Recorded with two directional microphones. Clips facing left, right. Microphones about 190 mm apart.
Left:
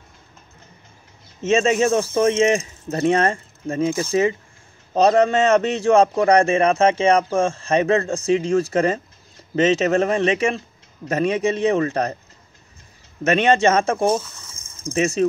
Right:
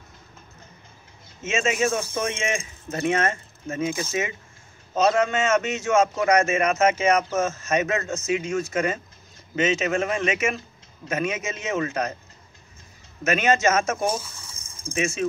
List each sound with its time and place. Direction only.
1.4 s speech: 35° left (ahead or behind)
13.2 s speech: 35° left (ahead or behind)